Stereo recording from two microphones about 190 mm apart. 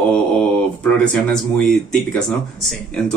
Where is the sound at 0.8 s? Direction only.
5° left (ahead or behind).